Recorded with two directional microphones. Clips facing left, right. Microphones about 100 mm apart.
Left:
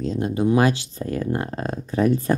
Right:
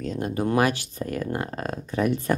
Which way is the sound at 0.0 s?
25° left (ahead or behind).